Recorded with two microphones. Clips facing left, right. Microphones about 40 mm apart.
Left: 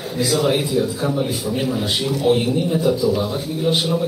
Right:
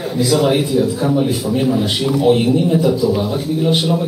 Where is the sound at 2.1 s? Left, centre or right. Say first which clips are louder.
Right 4 dB; centre.